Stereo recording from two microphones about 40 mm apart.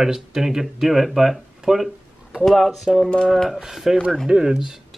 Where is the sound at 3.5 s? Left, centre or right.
Centre.